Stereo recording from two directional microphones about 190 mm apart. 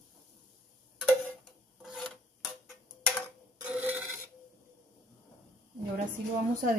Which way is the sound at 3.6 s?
10° right (ahead or behind).